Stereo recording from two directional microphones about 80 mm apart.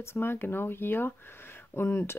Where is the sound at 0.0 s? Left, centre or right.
Left.